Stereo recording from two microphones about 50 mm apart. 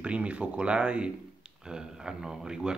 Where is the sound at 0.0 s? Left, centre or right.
Right.